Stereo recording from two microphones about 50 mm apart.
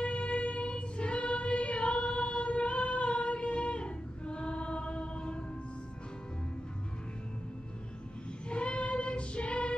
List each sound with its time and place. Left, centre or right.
0.0 s choir: left
8.5 s child singing: left